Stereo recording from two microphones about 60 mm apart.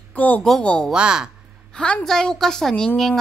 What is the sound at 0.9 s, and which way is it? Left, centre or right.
Speech, centre.